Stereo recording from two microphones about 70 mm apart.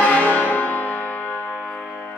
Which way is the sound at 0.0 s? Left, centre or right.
Left.